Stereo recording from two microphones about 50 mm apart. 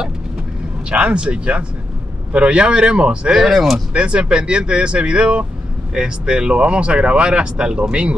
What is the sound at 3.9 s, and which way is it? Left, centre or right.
Speech, right.